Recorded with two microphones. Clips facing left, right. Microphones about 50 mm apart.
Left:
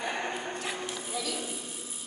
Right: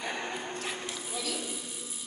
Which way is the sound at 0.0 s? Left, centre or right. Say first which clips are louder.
Left 2 dB; centre.